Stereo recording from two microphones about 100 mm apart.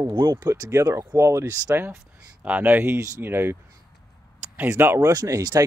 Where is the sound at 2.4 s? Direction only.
15° right (ahead or behind).